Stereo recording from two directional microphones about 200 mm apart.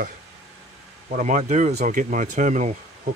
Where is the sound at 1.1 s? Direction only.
35° right (ahead or behind).